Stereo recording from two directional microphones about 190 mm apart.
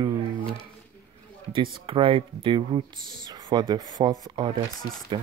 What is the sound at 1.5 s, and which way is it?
Speech, 25° right (ahead or behind).